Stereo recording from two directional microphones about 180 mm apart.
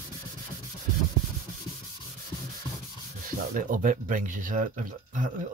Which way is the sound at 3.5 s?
50° right (ahead or behind).